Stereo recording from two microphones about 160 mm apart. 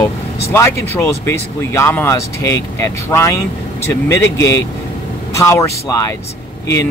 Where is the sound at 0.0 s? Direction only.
15° left (ahead or behind).